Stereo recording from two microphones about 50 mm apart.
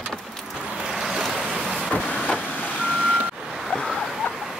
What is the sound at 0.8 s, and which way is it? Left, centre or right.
Waves, centre.